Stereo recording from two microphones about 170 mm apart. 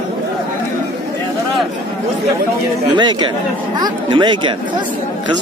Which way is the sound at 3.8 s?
25° right (ahead or behind).